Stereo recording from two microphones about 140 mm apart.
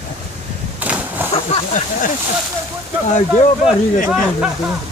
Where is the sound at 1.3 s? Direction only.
45° left (ahead or behind).